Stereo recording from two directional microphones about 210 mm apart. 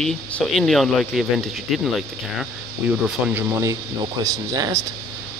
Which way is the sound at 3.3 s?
10° right (ahead or behind).